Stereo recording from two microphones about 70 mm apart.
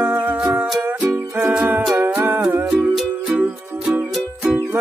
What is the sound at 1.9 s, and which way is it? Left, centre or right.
Music, right.